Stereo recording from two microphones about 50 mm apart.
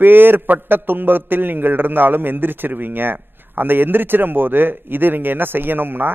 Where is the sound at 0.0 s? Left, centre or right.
Right.